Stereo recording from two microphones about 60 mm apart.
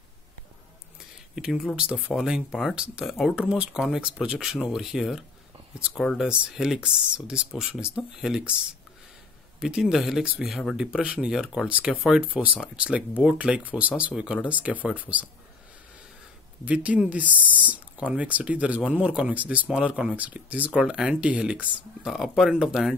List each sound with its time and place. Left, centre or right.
1.3 s speech: centre
1.8 s speech: right
2.1 s speech: centre
3.3 s speech: centre
16.6 s speech: right
22.0 s speech: centre